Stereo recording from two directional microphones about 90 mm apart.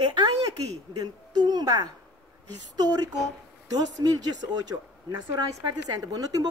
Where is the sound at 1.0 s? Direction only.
50° right (ahead or behind).